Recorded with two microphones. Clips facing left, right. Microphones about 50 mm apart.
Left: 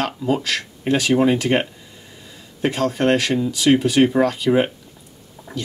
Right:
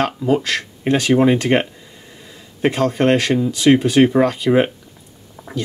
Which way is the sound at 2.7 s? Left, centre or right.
Centre.